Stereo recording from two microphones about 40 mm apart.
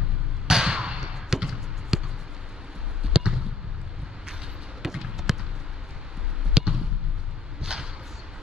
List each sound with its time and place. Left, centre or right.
0.5 s a sound: centre
1.0 s basketball bounce: centre
3.0 s basketball bounce: right
4.8 s basketball bounce: centre
6.5 s basketball bounce: centre
7.6 s a sound: centre